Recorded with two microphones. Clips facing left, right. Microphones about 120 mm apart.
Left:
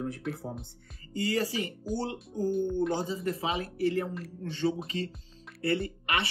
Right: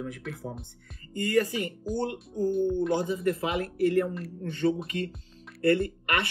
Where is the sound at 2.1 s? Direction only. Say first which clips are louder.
Right 2 dB; centre (ahead or behind).